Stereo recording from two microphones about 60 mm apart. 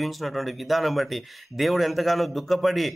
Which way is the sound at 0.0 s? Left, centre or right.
Centre.